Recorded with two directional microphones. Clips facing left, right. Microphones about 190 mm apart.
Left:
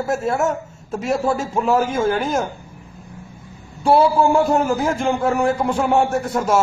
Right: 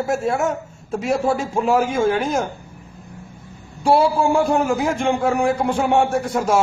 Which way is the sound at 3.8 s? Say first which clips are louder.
Left 2 dB; centre (ahead or behind).